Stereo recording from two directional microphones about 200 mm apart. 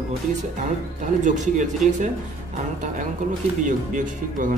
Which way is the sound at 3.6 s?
40° right (ahead or behind).